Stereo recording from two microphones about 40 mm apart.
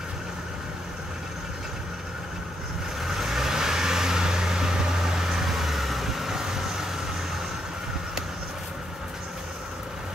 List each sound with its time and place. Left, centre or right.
3.0 s vehicle: centre